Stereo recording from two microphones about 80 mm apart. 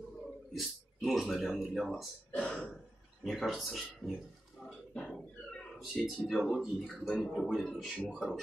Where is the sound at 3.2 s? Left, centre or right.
Centre.